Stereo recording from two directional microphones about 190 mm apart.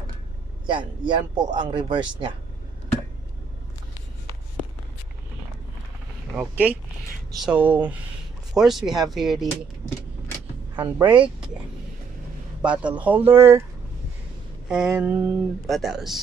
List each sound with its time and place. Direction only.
0.7 s speech: 25° right (ahead or behind)
6.3 s speech: 10° right (ahead or behind)
10.8 s speech: 10° right (ahead or behind)
12.6 s speech: 5° right (ahead or behind)
14.7 s speech: 5° right (ahead or behind)